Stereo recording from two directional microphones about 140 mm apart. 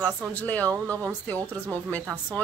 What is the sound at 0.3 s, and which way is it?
Speech, 10° left (ahead or behind).